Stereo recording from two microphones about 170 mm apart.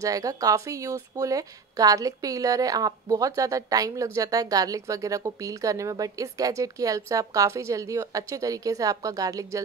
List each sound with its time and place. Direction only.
0.0 s a woman's voice: 20° right (ahead or behind)